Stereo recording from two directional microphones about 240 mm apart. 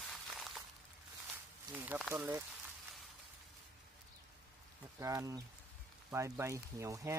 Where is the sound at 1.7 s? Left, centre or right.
Centre.